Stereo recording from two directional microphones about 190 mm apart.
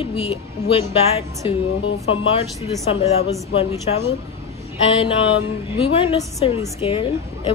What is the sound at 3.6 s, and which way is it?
A woman's voice, 30° left (ahead or behind).